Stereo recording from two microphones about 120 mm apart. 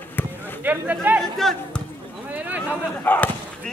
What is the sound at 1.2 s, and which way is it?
Speech, centre (ahead or behind).